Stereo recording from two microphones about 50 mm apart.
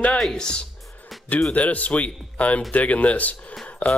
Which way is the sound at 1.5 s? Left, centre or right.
Left.